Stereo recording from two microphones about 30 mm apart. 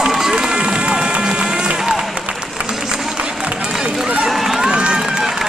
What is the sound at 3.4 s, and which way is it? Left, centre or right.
Run, right.